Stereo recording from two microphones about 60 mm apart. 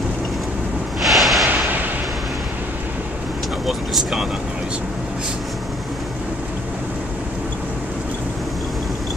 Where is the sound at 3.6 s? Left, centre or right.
Centre.